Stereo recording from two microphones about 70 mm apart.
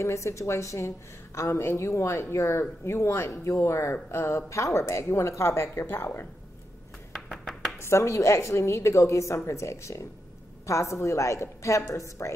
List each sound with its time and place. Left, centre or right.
0.0 s a woman's voice: left
7.1 s a sound: centre
7.8 s a woman's voice: left